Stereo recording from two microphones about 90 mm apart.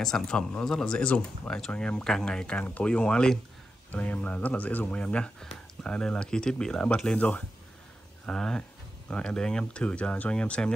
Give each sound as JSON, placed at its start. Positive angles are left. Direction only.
{"t": 0.0, "sound": "speech", "side_deg": 10}